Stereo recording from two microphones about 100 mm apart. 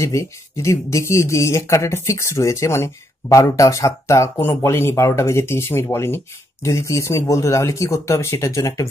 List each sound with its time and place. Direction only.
0.0 s speech: 30° left (ahead or behind)